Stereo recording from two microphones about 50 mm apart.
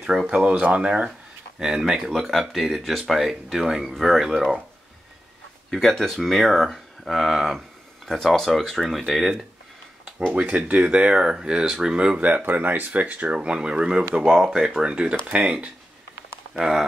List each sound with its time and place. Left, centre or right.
0.0 s speech: centre
2.8 s speech: centre
3.1 s speech: centre
5.7 s speech: centre
10.5 s speech: right
12.2 s speech: right
13.4 s speech: centre
16.5 s speech: centre